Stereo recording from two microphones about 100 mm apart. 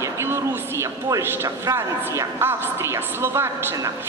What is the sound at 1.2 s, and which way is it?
A man's voice, 25° right (ahead or behind).